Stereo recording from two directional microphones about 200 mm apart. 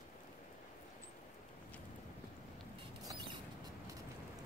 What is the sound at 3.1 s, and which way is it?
Rodents, 20° right (ahead or behind).